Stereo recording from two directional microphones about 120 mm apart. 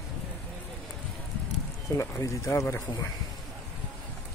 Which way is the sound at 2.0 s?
25° left (ahead or behind).